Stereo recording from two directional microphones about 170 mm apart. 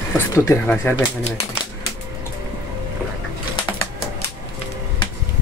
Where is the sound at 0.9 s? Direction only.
35° left (ahead or behind).